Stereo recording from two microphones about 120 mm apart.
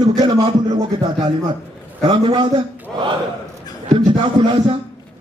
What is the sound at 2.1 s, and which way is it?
Speech, 40° right (ahead or behind).